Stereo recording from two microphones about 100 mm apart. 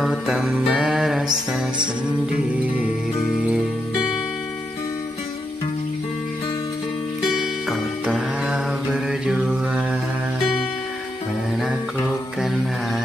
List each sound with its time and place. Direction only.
0.0 s music: 5° right (ahead or behind)
7.6 s music: 5° right (ahead or behind)
12.4 s music: 5° right (ahead or behind)